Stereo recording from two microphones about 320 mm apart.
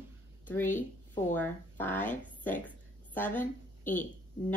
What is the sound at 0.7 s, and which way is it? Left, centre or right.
Speech, left.